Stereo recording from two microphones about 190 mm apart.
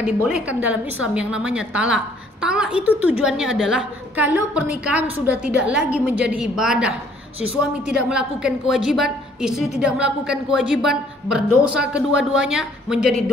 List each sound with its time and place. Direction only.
0.2 s a woman's voice: 5° right (ahead or behind)